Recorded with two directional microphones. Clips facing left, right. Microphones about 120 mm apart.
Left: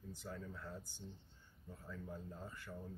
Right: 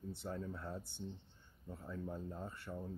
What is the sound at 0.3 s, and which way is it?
Speech, 30° right (ahead or behind).